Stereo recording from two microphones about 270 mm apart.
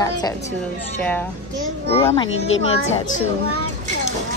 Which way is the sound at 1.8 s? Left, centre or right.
Left.